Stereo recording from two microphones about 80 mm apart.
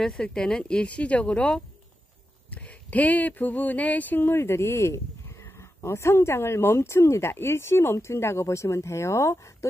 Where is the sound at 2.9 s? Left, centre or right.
Centre.